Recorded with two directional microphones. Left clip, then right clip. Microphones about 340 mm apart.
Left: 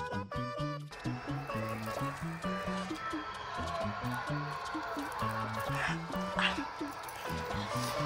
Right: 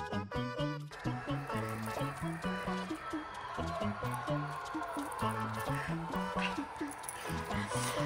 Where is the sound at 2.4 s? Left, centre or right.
Centre.